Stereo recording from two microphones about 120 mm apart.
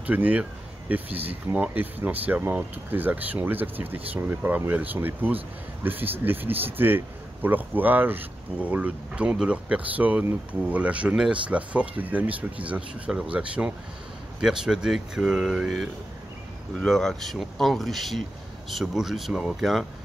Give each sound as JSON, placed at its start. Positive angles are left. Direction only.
{"t": 0.0, "sound": "speech", "side_deg": -10}